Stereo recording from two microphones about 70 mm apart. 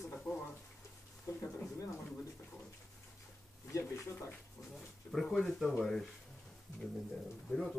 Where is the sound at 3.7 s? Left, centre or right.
Left.